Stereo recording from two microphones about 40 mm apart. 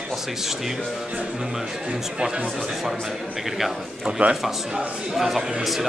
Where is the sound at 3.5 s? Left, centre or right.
Centre.